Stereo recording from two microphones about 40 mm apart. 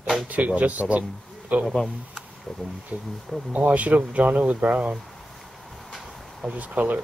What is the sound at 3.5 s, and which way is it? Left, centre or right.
Speech, right.